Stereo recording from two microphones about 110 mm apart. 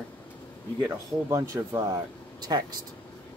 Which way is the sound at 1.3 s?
30° right (ahead or behind).